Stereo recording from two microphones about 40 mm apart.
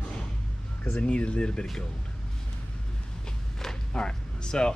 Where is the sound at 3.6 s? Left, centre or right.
Left.